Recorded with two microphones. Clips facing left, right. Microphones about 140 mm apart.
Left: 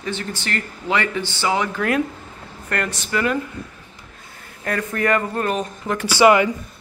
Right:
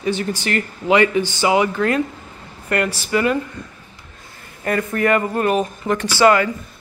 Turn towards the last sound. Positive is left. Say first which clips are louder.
# even
turn(degrees=15)  # may be behind; listen again after turning